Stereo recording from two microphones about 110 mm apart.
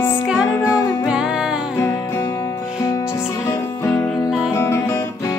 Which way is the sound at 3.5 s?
20° left (ahead or behind).